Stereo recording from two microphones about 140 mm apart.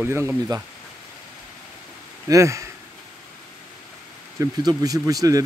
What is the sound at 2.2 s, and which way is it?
Speech, 20° right (ahead or behind).